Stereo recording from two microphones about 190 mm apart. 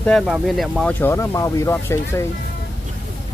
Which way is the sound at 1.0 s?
15° left (ahead or behind).